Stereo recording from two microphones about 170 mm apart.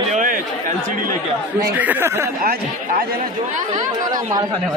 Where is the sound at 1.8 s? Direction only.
10° right (ahead or behind).